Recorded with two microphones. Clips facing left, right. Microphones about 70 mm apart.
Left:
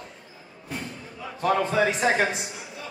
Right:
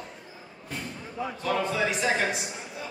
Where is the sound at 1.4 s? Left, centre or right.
Left.